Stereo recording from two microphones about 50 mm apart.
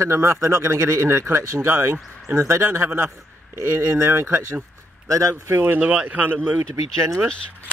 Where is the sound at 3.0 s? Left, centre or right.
Right.